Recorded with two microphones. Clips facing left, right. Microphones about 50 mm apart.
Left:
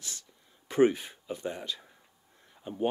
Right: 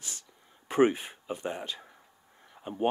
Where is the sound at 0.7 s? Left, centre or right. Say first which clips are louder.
Even; right.